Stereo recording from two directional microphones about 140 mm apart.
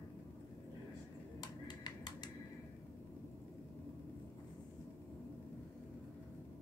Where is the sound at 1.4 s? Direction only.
30° left (ahead or behind).